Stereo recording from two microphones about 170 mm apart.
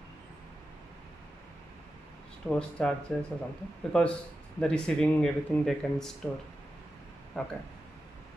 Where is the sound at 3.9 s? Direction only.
5° left (ahead or behind).